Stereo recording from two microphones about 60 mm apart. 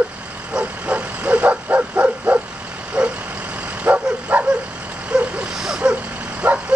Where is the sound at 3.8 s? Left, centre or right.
Right.